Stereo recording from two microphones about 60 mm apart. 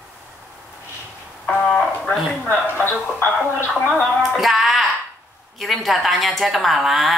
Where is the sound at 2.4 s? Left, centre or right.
Left.